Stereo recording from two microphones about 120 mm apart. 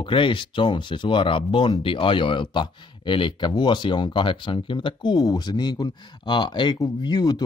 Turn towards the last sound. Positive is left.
turn(degrees=35)  # may be behind; listen again after turning